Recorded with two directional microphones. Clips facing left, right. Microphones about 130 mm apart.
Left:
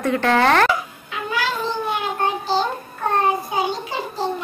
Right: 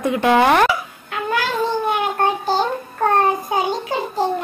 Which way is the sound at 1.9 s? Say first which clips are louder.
Right 3 dB; 50° right (ahead or behind).